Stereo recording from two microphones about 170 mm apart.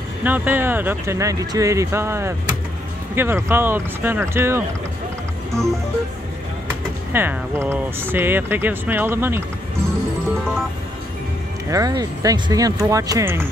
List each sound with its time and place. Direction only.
0.2 s speech: 10° right (ahead or behind)
5.5 s music: centre (ahead or behind)
7.1 s speech: 10° right (ahead or behind)
11.7 s speech: 20° right (ahead or behind)